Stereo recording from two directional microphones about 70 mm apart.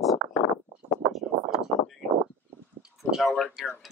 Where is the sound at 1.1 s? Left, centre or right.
Centre.